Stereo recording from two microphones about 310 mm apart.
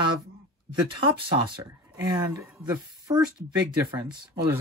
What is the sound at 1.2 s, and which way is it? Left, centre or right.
Speech, centre.